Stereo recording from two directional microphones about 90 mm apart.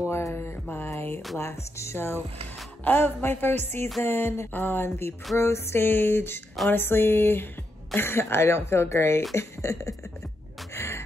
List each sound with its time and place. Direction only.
0.1 s a sound: 25° left (ahead or behind)
1.4 s speech: 30° left (ahead or behind)
10.7 s gasp: 30° left (ahead or behind)